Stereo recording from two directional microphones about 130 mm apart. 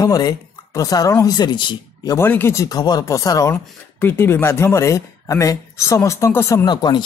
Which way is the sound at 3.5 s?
15° left (ahead or behind).